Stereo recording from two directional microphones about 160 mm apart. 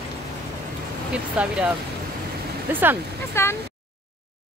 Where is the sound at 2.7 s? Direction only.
10° right (ahead or behind).